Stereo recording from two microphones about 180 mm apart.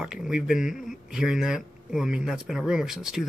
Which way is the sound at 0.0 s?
5° right (ahead or behind).